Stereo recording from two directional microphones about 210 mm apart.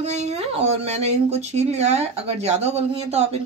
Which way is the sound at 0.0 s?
30° right (ahead or behind).